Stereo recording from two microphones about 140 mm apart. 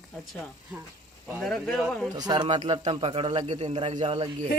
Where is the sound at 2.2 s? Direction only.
30° right (ahead or behind).